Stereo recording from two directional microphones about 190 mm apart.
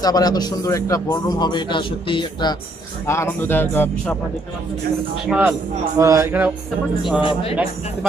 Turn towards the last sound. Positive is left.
turn(degrees=25)  # may be behind; listen again after turning